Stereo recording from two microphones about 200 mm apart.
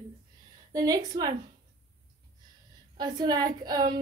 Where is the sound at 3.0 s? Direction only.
20° right (ahead or behind).